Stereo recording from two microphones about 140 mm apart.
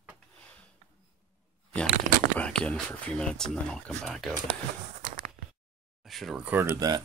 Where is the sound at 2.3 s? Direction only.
10° left (ahead or behind).